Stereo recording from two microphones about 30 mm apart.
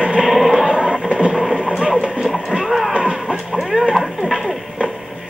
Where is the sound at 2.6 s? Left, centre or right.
Centre.